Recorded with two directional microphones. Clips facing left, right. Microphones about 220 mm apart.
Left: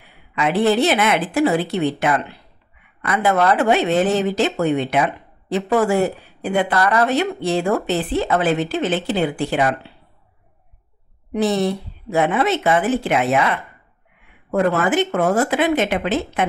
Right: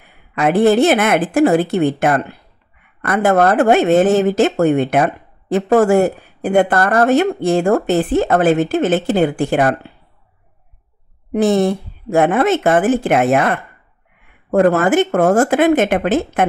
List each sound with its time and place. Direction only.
0.0 s speech: 50° right (ahead or behind)
11.3 s speech: 50° right (ahead or behind)